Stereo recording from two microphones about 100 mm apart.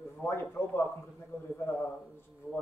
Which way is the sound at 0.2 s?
20° left (ahead or behind).